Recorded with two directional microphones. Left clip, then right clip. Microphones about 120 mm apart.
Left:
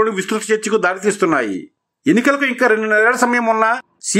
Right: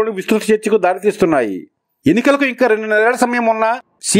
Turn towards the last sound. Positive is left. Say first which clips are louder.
# right 1 dB
turn(degrees=-40)  # may be behind; listen again after turning